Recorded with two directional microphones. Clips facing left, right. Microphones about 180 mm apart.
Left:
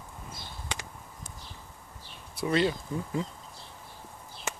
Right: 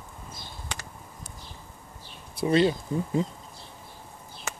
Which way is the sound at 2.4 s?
25° right (ahead or behind).